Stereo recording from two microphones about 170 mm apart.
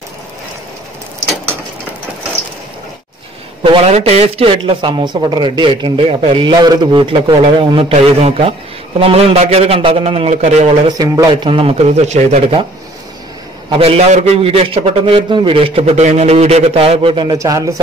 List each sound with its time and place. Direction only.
3.6 s a man's voice: 35° right (ahead or behind)
10.9 s a man's voice: 25° right (ahead or behind)
13.7 s a man's voice: 35° right (ahead or behind); by 17.7 s 20° right (ahead or behind)